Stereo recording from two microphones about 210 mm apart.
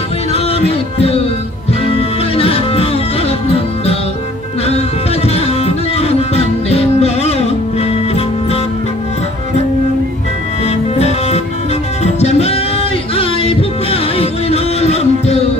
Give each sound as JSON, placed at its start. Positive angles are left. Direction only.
{"t": 0.3, "sound": "music", "side_deg": 30}
{"t": 10.6, "sound": "music", "side_deg": 30}